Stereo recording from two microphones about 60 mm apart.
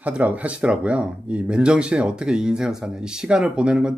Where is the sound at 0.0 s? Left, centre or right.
Right.